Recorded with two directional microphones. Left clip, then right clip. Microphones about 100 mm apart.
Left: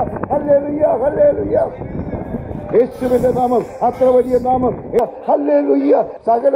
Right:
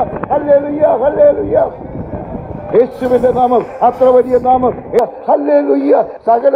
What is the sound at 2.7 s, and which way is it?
A man's voice, 25° right (ahead or behind).